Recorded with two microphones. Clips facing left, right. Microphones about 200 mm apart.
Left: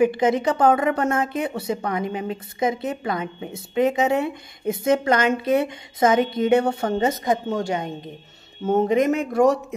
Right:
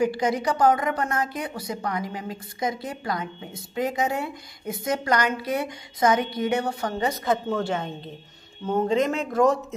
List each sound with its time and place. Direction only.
0.0 s a woman's voice: 20° left (ahead or behind)